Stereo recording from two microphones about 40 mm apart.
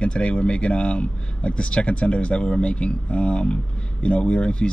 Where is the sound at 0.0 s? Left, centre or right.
Left.